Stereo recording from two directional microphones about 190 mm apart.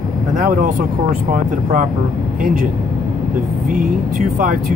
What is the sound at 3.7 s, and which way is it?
Speech, 45° right (ahead or behind).